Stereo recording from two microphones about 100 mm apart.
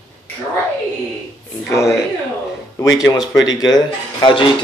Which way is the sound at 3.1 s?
40° left (ahead or behind).